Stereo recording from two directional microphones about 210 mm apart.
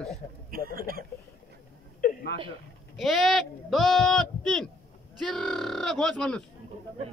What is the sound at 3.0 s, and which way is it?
A man's voice, centre (ahead or behind).